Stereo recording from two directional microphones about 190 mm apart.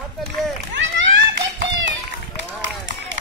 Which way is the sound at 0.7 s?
75° right (ahead or behind).